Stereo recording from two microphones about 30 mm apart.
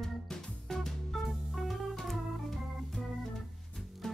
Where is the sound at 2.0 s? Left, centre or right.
Centre.